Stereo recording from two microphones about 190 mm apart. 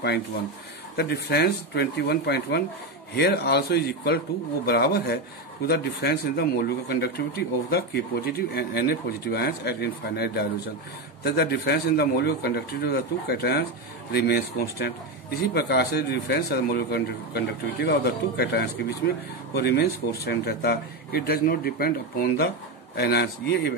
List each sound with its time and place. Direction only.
0.9 s speech: 60° left (ahead or behind)